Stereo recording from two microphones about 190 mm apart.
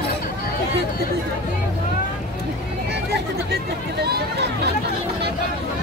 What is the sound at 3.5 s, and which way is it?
Speech, 60° right (ahead or behind).